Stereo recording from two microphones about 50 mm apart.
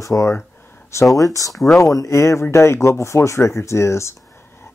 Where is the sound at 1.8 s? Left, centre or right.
Left.